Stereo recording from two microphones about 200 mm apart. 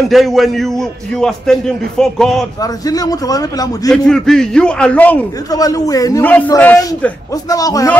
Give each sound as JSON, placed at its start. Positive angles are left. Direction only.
{"t": 0.1, "sound": "a man's voice", "side_deg": 0}
{"t": 2.6, "sound": "speech", "side_deg": 20}
{"t": 3.9, "sound": "a man's voice", "side_deg": 5}